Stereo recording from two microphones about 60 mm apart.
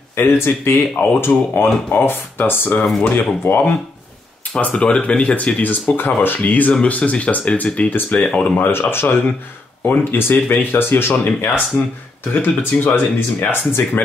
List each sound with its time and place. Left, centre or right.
0.1 s speech: left
4.6 s speech: left
8.5 s speech: left